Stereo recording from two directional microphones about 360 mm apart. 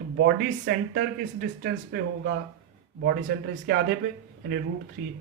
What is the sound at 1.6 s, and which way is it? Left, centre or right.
Speech, right.